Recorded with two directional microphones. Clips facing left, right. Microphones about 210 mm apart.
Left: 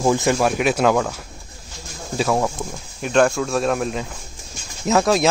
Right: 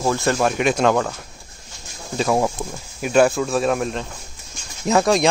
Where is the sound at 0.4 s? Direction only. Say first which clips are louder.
Even; 5° left (ahead or behind).